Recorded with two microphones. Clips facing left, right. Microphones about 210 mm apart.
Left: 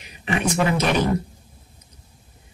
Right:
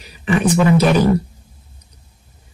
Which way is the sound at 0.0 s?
35° right (ahead or behind).